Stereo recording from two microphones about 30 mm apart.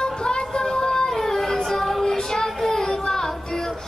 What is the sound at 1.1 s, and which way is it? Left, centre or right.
Child singing, centre.